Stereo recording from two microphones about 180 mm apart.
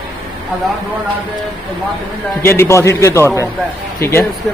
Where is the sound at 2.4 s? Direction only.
15° left (ahead or behind).